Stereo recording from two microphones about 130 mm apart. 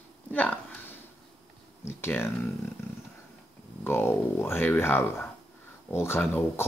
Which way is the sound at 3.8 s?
20° left (ahead or behind).